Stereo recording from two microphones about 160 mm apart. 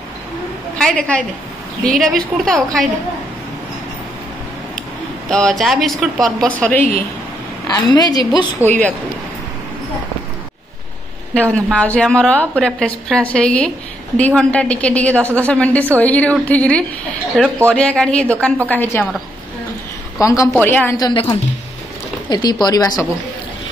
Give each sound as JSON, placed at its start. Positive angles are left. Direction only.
{"t": 0.7, "sound": "a woman's voice", "side_deg": 5}
{"t": 5.3, "sound": "a woman's voice", "side_deg": 5}
{"t": 7.6, "sound": "a woman's voice", "side_deg": 25}
{"t": 8.5, "sound": "a woman's voice", "side_deg": 10}
{"t": 11.5, "sound": "a woman's voice", "side_deg": 5}
{"t": 20.2, "sound": "a woman's voice", "side_deg": 20}
{"t": 20.9, "sound": "a woman's voice", "side_deg": 25}
{"t": 22.3, "sound": "a woman's voice", "side_deg": 25}